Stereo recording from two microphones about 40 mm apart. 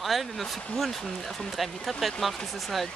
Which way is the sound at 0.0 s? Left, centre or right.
Centre.